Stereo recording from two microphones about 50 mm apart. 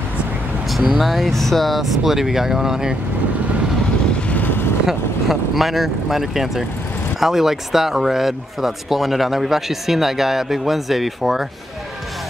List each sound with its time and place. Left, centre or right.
0.7 s speech: centre
4.3 s vehicle: left
4.8 s speech: centre